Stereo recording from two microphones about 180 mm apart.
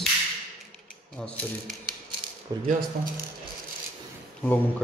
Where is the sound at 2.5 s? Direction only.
20° right (ahead or behind).